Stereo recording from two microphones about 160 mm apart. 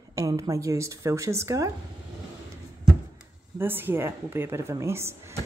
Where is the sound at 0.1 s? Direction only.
20° right (ahead or behind).